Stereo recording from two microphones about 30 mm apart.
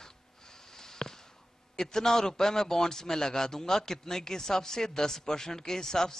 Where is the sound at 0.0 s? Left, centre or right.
Centre.